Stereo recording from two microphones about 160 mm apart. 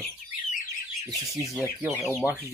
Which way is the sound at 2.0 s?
15° right (ahead or behind).